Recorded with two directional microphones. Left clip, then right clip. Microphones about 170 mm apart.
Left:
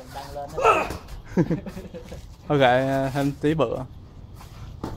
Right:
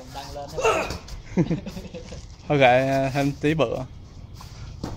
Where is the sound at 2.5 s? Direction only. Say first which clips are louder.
Right 1 dB; 10° left (ahead or behind).